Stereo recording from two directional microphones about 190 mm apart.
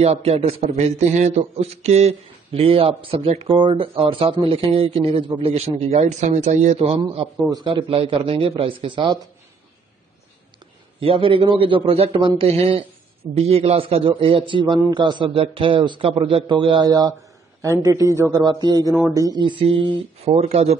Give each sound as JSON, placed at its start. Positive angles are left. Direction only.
{"t": 0.0, "sound": "a man's voice", "side_deg": -35}
{"t": 11.0, "sound": "a man's voice", "side_deg": -30}